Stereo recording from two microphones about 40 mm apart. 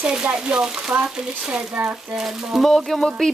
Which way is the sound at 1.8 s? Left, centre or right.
Right.